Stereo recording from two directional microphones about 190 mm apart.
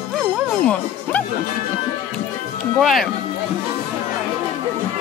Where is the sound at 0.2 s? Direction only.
5° left (ahead or behind).